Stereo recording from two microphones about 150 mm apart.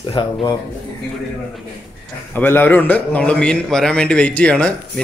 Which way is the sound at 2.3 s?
15° left (ahead or behind).